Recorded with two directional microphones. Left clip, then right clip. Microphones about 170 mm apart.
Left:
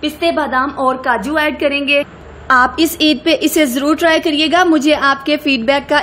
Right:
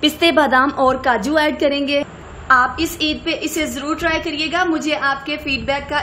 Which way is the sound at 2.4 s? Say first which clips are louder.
Left 3 dB; 45° left (ahead or behind).